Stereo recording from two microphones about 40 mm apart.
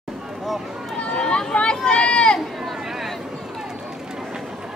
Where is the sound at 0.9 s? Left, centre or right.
Left.